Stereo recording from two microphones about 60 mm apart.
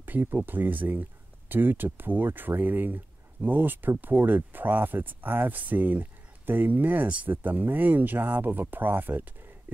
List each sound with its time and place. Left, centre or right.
0.0 s speech: right